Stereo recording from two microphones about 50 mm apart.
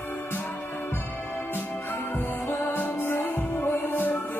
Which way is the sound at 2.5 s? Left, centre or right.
Left.